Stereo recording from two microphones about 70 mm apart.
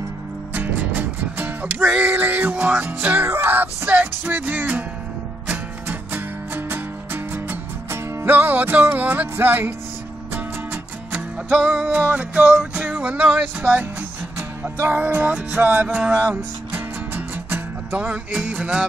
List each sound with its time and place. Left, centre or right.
0.6 s music: right
12.0 s music: right